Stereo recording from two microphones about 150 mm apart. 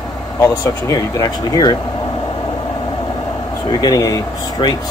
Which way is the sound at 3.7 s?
25° left (ahead or behind).